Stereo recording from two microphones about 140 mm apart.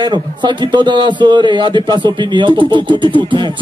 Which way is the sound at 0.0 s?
30° right (ahead or behind).